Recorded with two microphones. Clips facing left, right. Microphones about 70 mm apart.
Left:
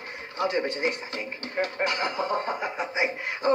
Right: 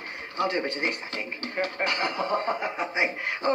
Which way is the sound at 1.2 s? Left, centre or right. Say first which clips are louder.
Even; right.